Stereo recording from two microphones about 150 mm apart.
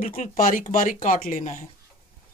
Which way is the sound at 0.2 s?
60° left (ahead or behind).